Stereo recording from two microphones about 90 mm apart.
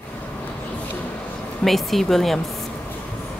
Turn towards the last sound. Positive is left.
turn(degrees=5)  # may be behind; listen again after turning